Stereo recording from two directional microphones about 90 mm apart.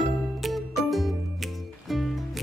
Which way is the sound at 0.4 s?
Centre (ahead or behind).